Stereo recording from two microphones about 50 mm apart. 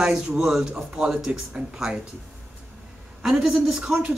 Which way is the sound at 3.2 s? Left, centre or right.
Centre.